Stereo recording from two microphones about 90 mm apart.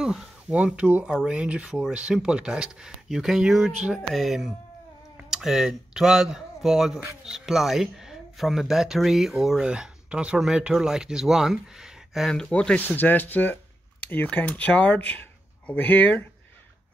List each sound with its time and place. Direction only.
0.0 s speech: 10° right (ahead or behind)
12.3 s speech: 10° left (ahead or behind)